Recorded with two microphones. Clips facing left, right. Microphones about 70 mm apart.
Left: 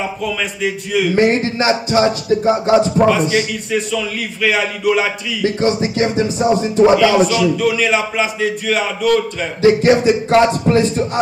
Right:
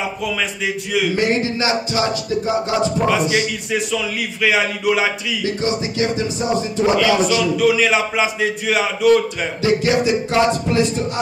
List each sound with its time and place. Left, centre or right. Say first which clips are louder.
0.2 s a man's voice: left 2 dB; centre
1.1 s speech: left 4 dB; left
3.3 s a man's voice: left 2 dB; centre
5.4 s speech: left 6 dB; left
6.1 s music: left 5 dB; left
7.1 s a man's voice: left 3 dB; centre
9.6 s speech: left 6 dB; left